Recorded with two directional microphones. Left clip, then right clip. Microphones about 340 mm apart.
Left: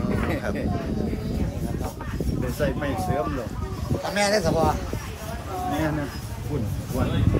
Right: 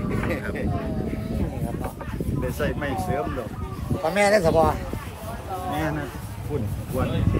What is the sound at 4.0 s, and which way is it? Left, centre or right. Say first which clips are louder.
Speech: right 4 dB; right.